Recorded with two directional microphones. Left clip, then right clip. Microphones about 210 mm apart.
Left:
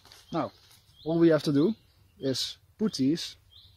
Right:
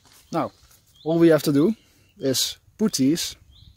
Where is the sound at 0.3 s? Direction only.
55° right (ahead or behind).